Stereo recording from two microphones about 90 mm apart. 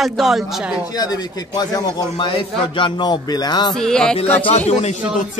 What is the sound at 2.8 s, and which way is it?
Speech, 60° left (ahead or behind).